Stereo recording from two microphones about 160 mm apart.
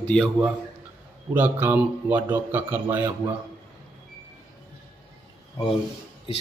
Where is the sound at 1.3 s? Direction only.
10° right (ahead or behind).